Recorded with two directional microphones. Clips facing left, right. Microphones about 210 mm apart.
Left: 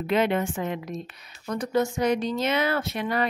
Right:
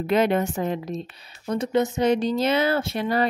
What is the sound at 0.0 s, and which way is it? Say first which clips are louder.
A woman's voice: right 3 dB; 40° right (ahead or behind).